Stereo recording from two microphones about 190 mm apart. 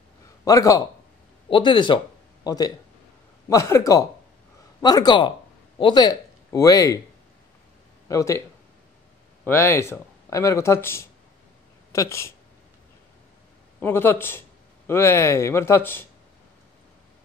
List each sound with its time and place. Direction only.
0.5 s speech: 15° left (ahead or behind)
8.1 s speech: 15° left (ahead or behind)
9.4 s speech: 10° left (ahead or behind)
13.7 s speech: 10° left (ahead or behind)